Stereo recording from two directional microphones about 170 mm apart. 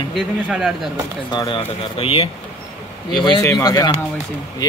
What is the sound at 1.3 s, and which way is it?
Speech, 25° left (ahead or behind).